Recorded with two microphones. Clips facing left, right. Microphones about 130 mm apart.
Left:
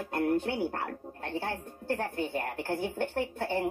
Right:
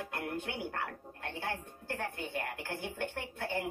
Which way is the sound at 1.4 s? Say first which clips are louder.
Left 3 dB; 50° left (ahead or behind).